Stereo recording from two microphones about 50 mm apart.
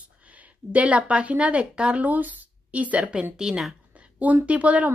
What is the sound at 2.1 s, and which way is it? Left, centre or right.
Speech, right.